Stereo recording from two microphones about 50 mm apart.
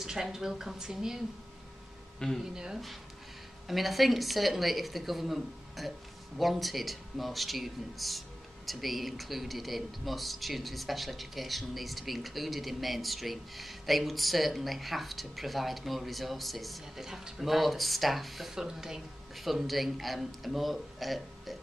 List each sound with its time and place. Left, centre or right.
0.0 s a woman's voice: centre
2.2 s speech: centre
2.5 s a woman's voice: centre
3.6 s speech: centre